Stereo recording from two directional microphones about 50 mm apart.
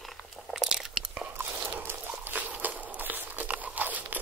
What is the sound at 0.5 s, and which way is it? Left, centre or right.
Crunch, centre.